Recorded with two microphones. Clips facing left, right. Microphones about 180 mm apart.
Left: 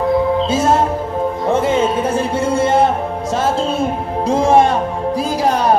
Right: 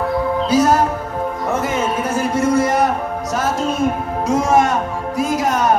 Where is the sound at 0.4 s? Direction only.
25° left (ahead or behind).